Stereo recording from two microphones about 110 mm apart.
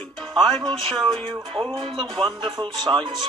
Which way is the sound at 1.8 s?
50° right (ahead or behind).